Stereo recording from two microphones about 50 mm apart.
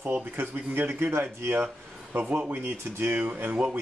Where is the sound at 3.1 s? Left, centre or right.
Right.